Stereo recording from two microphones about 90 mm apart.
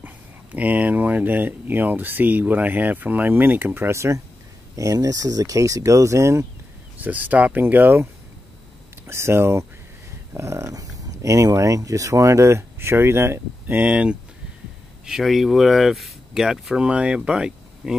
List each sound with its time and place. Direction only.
0.6 s speech: 15° right (ahead or behind); by 6.4 s 35° right (ahead or behind)
7.0 s speech: 20° right (ahead or behind)
15.0 s speech: 5° right (ahead or behind)